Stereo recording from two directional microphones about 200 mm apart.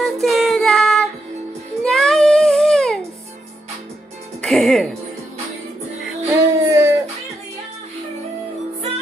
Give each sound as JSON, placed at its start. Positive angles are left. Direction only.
{"t": 0.0, "sound": "child singing", "side_deg": 0}
{"t": 4.4, "sound": "speech", "side_deg": 0}
{"t": 6.2, "sound": "music", "side_deg": -15}